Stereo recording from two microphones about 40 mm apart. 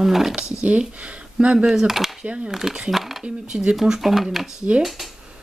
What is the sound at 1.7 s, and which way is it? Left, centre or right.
Speech, centre.